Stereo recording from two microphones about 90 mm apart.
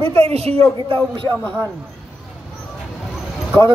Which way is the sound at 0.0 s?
90° right.